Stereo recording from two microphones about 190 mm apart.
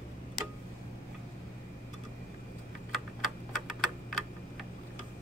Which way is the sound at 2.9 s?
Centre (ahead or behind).